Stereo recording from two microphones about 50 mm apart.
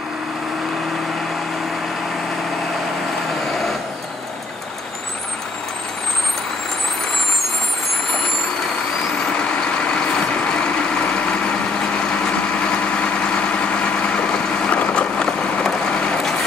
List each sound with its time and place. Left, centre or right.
9.3 s vehicle: centre
12.6 s vehicle: left
14.7 s boat: left
15.1 s vehicle: centre